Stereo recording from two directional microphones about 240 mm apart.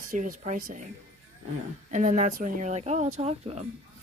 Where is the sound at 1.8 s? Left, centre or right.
Right.